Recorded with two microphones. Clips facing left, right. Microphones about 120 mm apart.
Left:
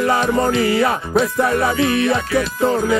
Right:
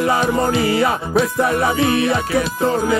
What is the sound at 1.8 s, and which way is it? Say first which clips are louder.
Music: even; 30° right (ahead or behind).